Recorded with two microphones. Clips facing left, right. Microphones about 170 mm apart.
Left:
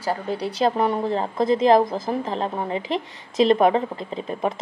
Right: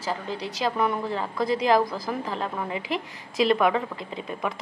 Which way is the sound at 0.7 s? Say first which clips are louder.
Left 1 dB; 40° left (ahead or behind).